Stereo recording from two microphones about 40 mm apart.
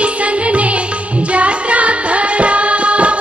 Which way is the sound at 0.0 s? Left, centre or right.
Right.